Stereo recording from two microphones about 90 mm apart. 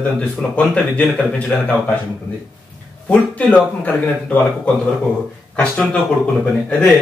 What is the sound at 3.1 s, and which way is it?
A man's voice, 15° left (ahead or behind).